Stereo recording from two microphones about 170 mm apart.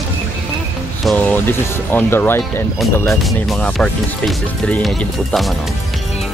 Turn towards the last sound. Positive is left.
turn(degrees=0)  # may be behind; listen again after turning